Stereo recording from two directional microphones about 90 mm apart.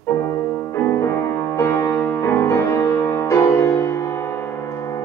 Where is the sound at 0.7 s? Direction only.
30° left (ahead or behind).